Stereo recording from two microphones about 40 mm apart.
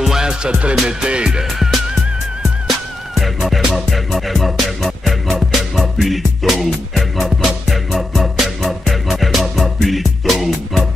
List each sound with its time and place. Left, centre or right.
0.0 s music: centre
0.3 s music: right
3.2 s music: centre